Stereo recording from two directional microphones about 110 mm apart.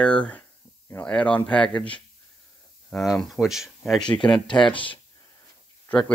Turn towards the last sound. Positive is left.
turn(degrees=10)  # may be behind; listen again after turning